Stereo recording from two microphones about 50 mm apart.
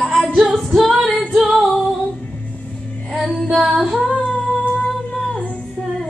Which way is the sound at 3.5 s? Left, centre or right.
Centre.